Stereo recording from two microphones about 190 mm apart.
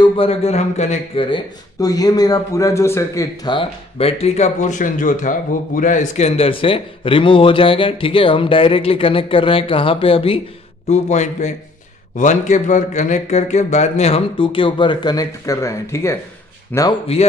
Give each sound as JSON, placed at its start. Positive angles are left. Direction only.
{"t": 0.0, "sound": "a man's voice", "side_deg": 30}
{"t": 17.1, "sound": "speech", "side_deg": 30}